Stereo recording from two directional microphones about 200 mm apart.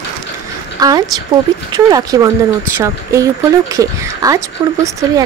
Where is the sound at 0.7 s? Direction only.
20° right (ahead or behind).